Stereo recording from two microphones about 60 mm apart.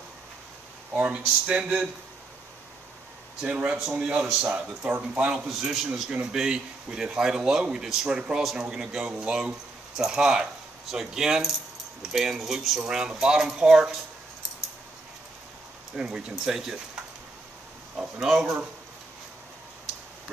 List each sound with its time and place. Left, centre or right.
0.9 s speech: right
3.3 s speech: centre
5.5 s speech: centre
16.0 s speech: centre
17.9 s speech: centre